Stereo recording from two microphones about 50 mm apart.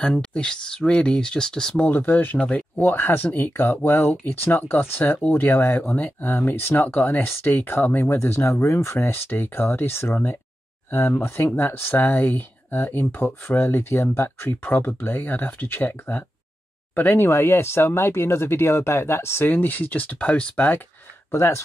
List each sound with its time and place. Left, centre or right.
0.0 s speech: centre
2.0 s speech: left
2.3 s speech: left
2.8 s speech: left
5.9 s speech: left
6.3 s speech: left
8.1 s speech: left
17.4 s speech: left
19.5 s speech: left
21.3 s speech: left